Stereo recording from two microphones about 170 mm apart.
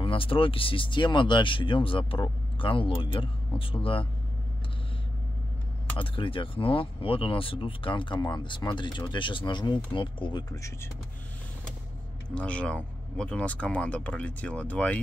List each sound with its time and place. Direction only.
0.0 s speech: 30° left (ahead or behind)
5.9 s speech: 30° left (ahead or behind)
12.4 s speech: 5° left (ahead or behind)